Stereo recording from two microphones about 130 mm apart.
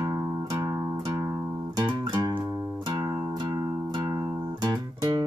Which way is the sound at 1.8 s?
30° right (ahead or behind).